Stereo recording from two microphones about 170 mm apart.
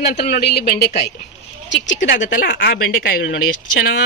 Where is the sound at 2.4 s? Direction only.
65° left (ahead or behind).